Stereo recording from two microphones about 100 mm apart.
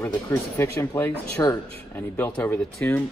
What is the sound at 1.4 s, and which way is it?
Speech, 35° left (ahead or behind).